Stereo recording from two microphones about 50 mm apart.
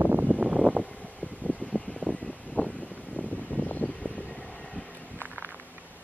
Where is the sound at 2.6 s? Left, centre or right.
Left.